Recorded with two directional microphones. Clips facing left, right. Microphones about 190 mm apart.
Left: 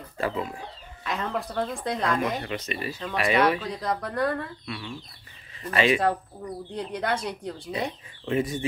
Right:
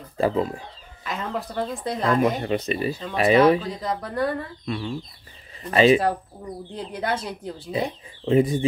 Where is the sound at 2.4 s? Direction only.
30° right (ahead or behind).